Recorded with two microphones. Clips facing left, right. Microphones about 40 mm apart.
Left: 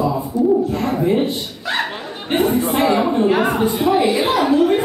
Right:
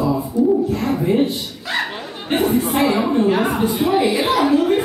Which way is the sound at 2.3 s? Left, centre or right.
Centre.